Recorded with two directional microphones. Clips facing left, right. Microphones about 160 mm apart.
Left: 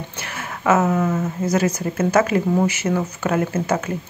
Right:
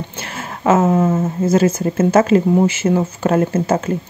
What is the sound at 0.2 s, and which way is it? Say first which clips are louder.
Speech: right 4 dB; 30° right (ahead or behind).